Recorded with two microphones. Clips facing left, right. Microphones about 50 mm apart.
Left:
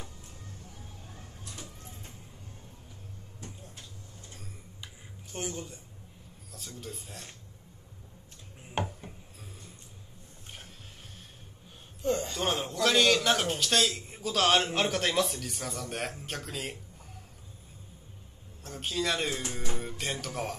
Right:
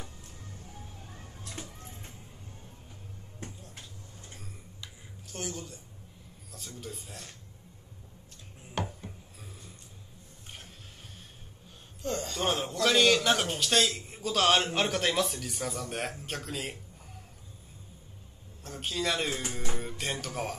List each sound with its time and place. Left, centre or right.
1.4 s a sound: right
5.3 s speech: left
6.8 s a man's voice: centre
8.8 s a sound: left
12.0 s a man's voice: centre
12.4 s a man's voice: centre
18.6 s a man's voice: centre